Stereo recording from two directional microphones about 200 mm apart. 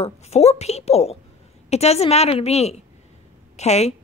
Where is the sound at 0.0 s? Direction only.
30° left (ahead or behind).